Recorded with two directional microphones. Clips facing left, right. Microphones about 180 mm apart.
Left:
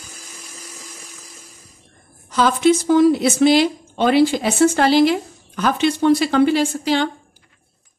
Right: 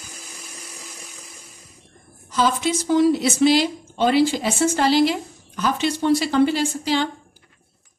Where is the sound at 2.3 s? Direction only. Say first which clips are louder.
Left 6 dB; 60° left (ahead or behind).